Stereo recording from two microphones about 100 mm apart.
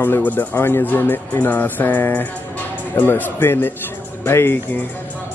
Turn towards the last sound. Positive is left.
turn(degrees=20)  # may be behind; listen again after turning